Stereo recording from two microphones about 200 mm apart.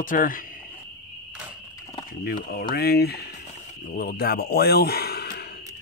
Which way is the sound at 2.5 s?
50° left (ahead or behind).